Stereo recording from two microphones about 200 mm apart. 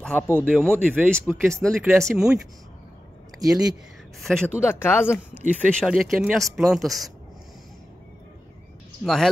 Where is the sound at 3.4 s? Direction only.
20° right (ahead or behind).